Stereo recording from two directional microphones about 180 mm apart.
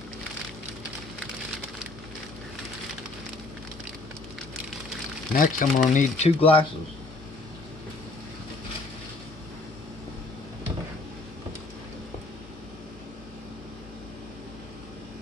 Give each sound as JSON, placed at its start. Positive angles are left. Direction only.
{"t": 5.3, "sound": "speech", "side_deg": 50}